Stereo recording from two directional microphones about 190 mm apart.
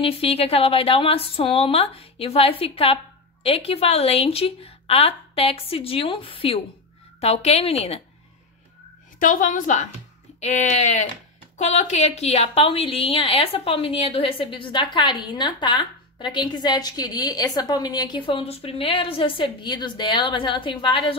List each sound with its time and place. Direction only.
0.0 s speech: 30° left (ahead or behind)
9.2 s a woman's voice: 45° left (ahead or behind); by 21.2 s 25° left (ahead or behind)